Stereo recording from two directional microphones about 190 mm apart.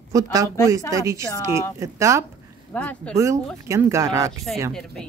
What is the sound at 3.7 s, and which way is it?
Speech, 15° right (ahead or behind).